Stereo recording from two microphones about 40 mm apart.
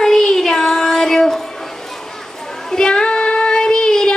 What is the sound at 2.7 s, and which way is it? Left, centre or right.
Child singing, centre.